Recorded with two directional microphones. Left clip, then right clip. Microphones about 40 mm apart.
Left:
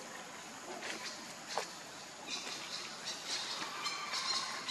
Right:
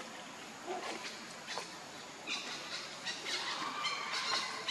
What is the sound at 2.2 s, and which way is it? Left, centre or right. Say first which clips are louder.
Train: right 2 dB; right.